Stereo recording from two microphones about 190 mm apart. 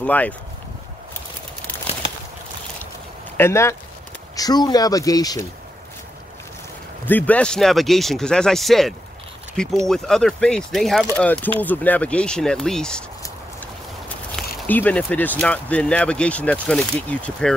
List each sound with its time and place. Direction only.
0.0 s speech: 10° left (ahead or behind)
3.3 s speech: 15° left (ahead or behind)
7.1 s speech: 10° left (ahead or behind)
13.2 s a sound: 10° left (ahead or behind)
17.1 s speech: 5° left (ahead or behind)